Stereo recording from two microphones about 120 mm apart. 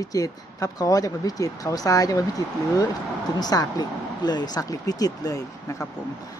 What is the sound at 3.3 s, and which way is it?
Speech, 35° left (ahead or behind).